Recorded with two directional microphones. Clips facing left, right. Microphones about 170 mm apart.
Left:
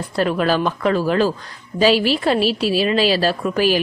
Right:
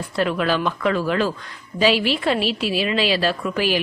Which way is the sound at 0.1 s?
40° left (ahead or behind).